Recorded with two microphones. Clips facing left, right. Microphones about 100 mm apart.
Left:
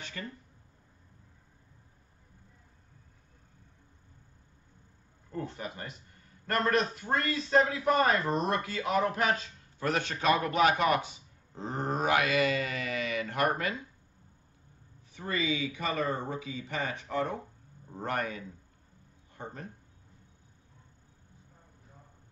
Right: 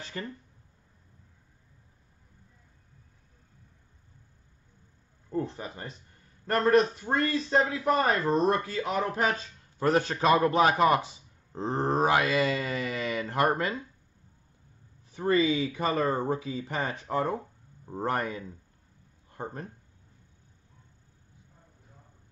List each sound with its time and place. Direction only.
0.0 s a man's voice: 35° right (ahead or behind)
5.3 s a man's voice: 30° right (ahead or behind)
15.1 s a man's voice: 35° right (ahead or behind)
19.3 s speech: 45° right (ahead or behind)